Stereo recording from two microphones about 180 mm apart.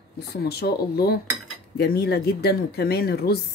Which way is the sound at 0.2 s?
60° left (ahead or behind).